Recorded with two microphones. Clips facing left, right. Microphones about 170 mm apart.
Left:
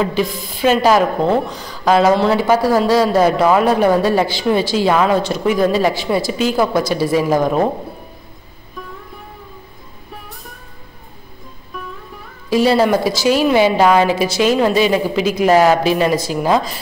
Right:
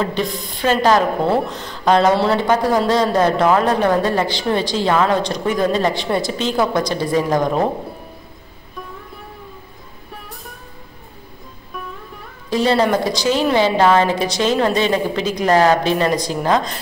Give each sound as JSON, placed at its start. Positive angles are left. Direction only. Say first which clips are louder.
{"t": 0.0, "sound": "speech", "louder": "left 3 dB", "side_deg": 5}
{"t": 1.2, "sound": "a woman's voice", "louder": "left 2 dB", "side_deg": -5}
{"t": 12.4, "sound": "a woman's voice", "louder": "left 3 dB", "side_deg": 10}